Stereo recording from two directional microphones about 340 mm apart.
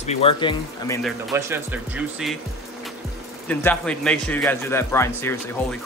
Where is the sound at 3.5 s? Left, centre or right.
Centre.